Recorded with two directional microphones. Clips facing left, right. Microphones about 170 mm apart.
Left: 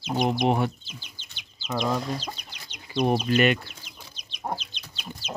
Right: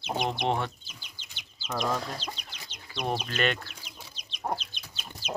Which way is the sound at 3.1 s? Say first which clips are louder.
Left 6 dB; 10° left (ahead or behind).